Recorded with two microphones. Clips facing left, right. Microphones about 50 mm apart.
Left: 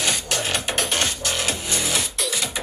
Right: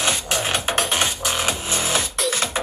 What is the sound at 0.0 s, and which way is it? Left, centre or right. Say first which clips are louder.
Music: right 2 dB; right.